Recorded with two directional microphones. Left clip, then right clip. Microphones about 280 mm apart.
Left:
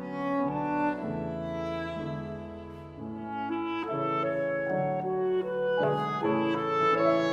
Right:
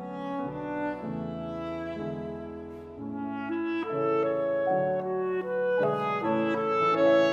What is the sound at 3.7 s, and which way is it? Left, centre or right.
Music, right.